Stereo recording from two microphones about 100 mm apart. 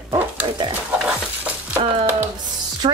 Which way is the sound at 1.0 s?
15° right (ahead or behind).